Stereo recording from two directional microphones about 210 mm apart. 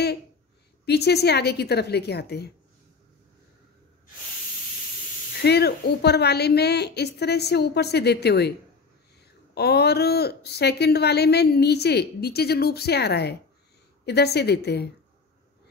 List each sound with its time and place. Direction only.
0.8 s a woman's voice: 50° left (ahead or behind)
5.4 s a woman's voice: 50° left (ahead or behind)